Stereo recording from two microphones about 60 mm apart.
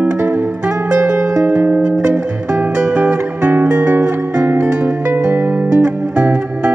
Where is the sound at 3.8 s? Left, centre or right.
Right.